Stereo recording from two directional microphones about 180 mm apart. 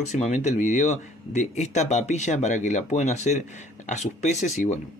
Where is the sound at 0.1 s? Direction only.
40° left (ahead or behind).